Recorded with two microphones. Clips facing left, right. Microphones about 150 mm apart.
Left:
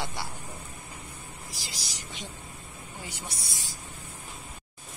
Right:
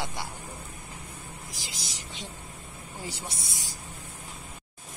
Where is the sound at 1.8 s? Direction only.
25° right (ahead or behind).